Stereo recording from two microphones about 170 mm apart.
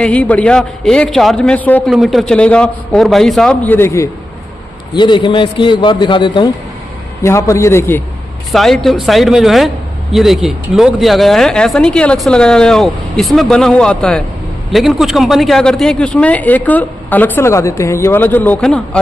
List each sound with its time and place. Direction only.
0.0 s a man's voice: 10° left (ahead or behind)
4.9 s a man's voice: 25° left (ahead or behind)
7.2 s a man's voice: 15° left (ahead or behind)
8.5 s a man's voice: centre (ahead or behind)